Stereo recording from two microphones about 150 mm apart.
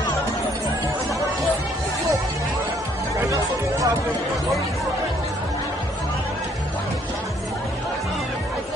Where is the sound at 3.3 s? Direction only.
20° right (ahead or behind).